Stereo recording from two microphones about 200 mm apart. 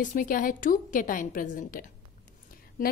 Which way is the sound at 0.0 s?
40° left (ahead or behind).